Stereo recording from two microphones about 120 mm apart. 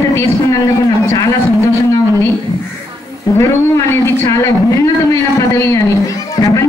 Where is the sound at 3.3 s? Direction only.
20° left (ahead or behind).